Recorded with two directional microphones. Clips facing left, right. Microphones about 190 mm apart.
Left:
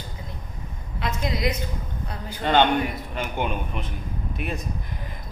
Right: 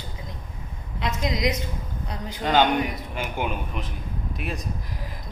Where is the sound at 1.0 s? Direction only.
20° right (ahead or behind).